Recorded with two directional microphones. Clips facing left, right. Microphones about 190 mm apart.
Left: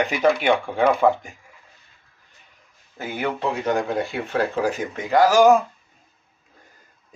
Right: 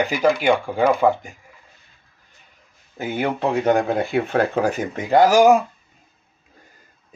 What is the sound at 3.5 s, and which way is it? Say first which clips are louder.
Speech: right 7 dB; 55° right (ahead or behind).